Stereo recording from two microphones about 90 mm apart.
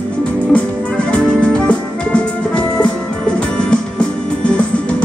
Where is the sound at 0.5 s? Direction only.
15° left (ahead or behind).